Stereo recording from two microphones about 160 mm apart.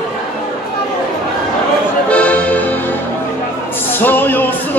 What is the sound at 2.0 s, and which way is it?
Accordion, 10° left (ahead or behind).